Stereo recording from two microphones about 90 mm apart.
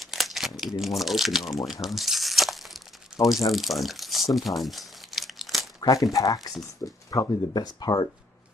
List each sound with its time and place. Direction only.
0.0 s crumpling: centre (ahead or behind)
0.6 s speech: centre (ahead or behind)
1.7 s crumpling: centre (ahead or behind)
5.8 s crumpling: 40° left (ahead or behind)
6.1 s speech: 45° left (ahead or behind)